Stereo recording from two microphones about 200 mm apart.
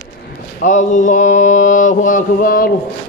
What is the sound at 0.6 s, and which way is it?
Mantra, 40° left (ahead or behind).